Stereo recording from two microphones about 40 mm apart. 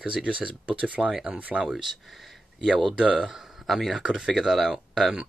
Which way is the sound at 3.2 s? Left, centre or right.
Centre.